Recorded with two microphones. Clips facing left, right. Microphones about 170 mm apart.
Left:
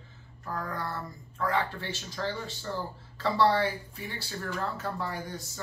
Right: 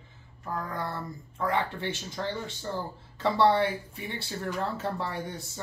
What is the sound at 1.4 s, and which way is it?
Speech, 20° right (ahead or behind).